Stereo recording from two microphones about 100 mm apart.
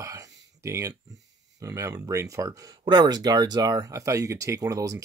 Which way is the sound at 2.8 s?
45° right (ahead or behind).